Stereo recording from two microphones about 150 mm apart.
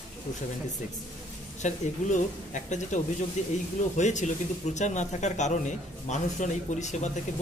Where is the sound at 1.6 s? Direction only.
55° left (ahead or behind).